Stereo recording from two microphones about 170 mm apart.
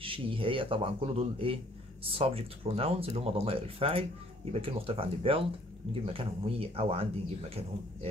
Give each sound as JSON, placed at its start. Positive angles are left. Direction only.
{"t": 0.0, "sound": "speech", "side_deg": -30}